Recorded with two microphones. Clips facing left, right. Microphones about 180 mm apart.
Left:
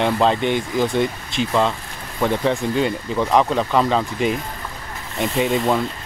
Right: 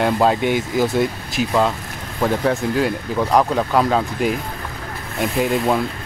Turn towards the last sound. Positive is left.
turn(degrees=0)  # may be behind; listen again after turning